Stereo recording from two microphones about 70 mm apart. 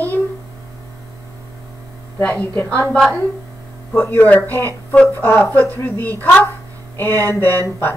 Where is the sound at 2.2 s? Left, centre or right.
Left.